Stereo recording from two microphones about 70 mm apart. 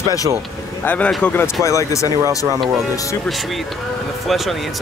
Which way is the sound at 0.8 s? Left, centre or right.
Left.